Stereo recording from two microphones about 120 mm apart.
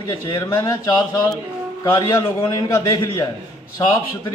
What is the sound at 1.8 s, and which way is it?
A man's voice, 25° left (ahead or behind).